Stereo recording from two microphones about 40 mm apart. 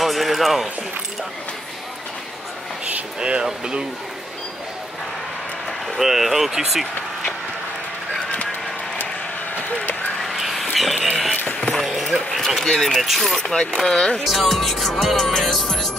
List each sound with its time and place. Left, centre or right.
0.0 s run: centre
3.2 s speech: right
5.9 s speech: centre
8.3 s bird: left
10.2 s a sound: centre
11.7 s basketball bounce: centre
12.6 s speech: centre
13.0 s music: centre
13.4 s speech: centre
14.2 s music: centre